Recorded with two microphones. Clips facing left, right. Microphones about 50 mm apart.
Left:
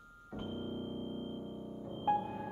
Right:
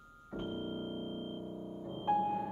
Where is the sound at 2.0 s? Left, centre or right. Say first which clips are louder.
Right 1 dB; centre.